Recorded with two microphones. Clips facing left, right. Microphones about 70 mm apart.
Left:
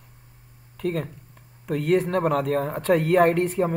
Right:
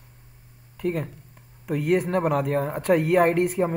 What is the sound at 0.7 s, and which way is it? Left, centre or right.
Speech, centre.